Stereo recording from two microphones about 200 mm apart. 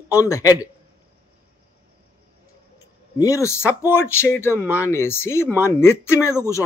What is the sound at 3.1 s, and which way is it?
Speech, 15° left (ahead or behind).